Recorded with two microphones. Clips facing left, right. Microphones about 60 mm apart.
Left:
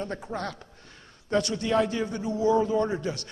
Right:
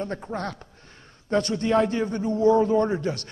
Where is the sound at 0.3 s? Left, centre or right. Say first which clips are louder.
Right 2 dB; right.